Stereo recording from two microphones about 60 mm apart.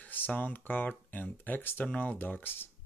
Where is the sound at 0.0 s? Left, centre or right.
Left.